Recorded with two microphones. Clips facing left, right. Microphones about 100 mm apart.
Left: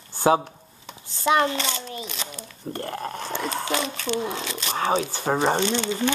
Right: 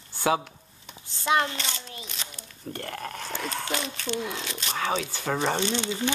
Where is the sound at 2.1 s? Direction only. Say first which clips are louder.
Left 6 dB; 90° left.